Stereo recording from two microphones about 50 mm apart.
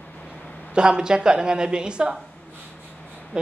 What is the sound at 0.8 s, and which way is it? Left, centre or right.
A woman's voice, centre.